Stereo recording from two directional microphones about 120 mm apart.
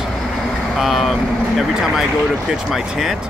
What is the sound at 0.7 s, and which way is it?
Speech, centre (ahead or behind).